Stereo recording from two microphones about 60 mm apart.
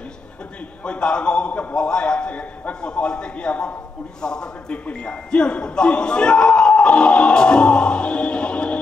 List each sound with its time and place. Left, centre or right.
0.8 s speech: centre